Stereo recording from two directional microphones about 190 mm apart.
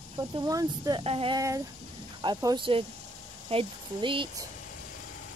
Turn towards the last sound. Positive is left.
turn(degrees=-25)  # may be behind; listen again after turning